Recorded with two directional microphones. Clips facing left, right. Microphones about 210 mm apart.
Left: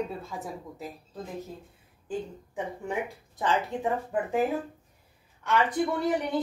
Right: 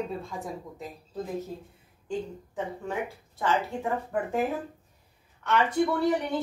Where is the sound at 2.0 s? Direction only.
15° left (ahead or behind).